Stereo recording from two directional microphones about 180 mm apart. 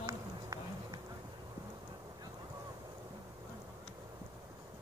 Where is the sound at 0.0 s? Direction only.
20° right (ahead or behind).